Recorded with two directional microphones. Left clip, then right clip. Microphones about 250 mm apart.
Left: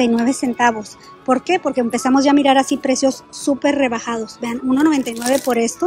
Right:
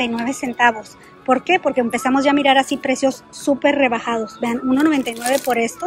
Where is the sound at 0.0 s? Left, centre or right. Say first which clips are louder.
Left 4 dB; centre.